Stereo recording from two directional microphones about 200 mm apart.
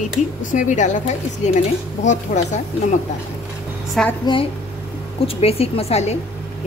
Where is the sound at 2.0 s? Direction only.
35° left (ahead or behind).